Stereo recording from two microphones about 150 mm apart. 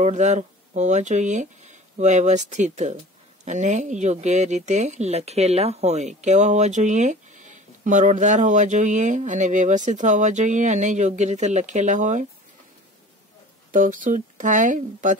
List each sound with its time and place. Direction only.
0.0 s speech: 50° right (ahead or behind)
13.7 s speech: 60° right (ahead or behind)